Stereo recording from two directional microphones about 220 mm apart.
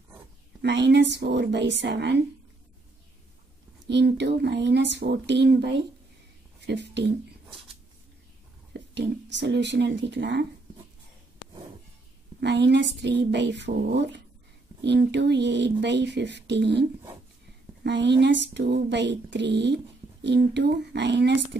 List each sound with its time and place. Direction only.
0.6 s speech: 50° right (ahead or behind)
3.8 s speech: 50° right (ahead or behind)
8.9 s speech: 50° right (ahead or behind)
12.4 s speech: 50° right (ahead or behind)
17.8 s speech: 50° right (ahead or behind)